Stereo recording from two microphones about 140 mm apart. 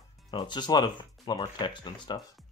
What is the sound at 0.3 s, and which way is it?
Speech, 30° left (ahead or behind).